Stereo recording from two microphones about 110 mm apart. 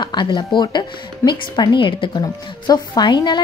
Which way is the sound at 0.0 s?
45° left (ahead or behind).